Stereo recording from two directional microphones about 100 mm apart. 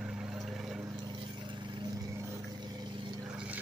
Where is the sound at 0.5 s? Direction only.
5° right (ahead or behind).